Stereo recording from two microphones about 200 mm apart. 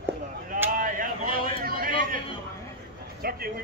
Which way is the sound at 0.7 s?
45° right (ahead or behind).